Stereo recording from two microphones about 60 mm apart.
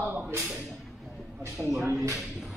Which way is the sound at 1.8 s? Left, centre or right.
Right.